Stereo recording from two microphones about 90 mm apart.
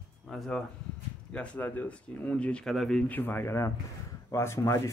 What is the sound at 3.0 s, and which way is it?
Speech, 20° left (ahead or behind).